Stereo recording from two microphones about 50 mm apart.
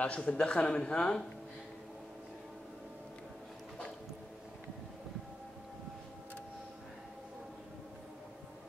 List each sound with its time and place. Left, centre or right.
0.0 s a man's voice: left